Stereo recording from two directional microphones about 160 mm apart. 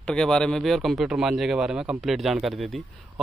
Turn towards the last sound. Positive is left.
turn(degrees=0)  # may be behind; listen again after turning